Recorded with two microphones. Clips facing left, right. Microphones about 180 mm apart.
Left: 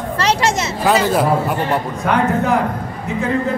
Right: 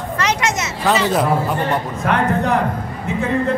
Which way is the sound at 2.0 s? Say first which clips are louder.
Left 1 dB; centre (ahead or behind).